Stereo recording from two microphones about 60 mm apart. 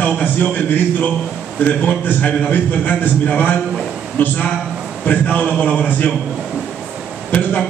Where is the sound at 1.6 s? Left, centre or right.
Left.